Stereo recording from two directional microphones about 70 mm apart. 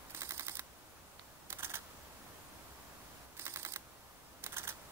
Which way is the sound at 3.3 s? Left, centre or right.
Right.